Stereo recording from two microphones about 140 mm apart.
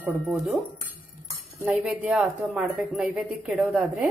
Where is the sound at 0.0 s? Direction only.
10° right (ahead or behind).